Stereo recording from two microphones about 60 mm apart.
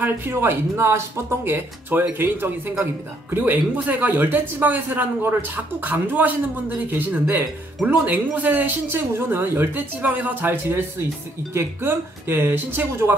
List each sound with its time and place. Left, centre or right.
0.0 s speech: right
8.8 s speech: right
10.0 s speech: right